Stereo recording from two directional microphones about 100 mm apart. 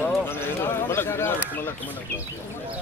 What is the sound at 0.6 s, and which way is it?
Speech, 25° left (ahead or behind).